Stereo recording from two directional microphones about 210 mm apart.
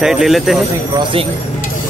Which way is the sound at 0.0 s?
Centre (ahead or behind).